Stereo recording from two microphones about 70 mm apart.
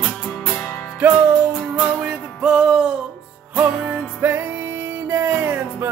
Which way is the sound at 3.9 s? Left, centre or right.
Right.